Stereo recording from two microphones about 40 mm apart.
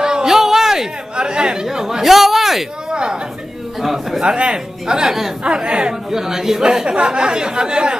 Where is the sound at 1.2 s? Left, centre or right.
Right.